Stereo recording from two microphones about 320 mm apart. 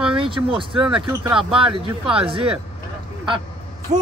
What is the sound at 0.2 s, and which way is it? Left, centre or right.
Speech, centre.